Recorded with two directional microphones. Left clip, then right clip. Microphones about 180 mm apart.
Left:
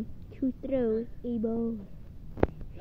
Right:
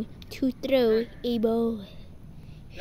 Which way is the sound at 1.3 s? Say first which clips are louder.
Right 7 dB; 20° right (ahead or behind).